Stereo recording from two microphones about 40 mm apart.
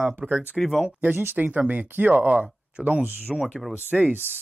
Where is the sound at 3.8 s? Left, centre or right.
Right.